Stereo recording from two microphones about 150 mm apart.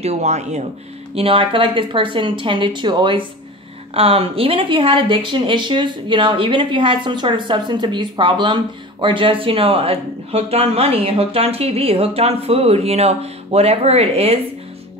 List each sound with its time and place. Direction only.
0.0 s speech: 50° right (ahead or behind)
1.1 s a woman's voice: 40° right (ahead or behind)